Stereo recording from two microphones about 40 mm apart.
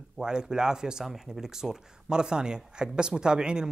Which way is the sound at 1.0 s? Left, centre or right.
Centre.